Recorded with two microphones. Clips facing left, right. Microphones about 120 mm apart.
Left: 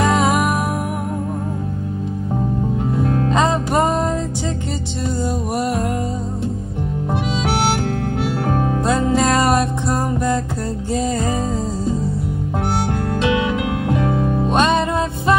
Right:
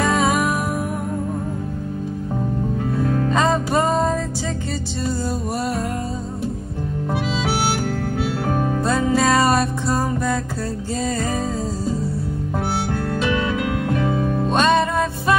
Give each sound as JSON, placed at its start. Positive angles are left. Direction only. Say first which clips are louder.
{"t": 0.0, "sound": "music", "louder": "left 2 dB", "side_deg": 20}
{"t": 3.0, "sound": "music", "louder": "left 2 dB", "side_deg": 20}
{"t": 8.6, "sound": "music", "louder": "left 1 dB", "side_deg": 15}
{"t": 13.2, "sound": "music", "louder": "left 3 dB", "side_deg": 15}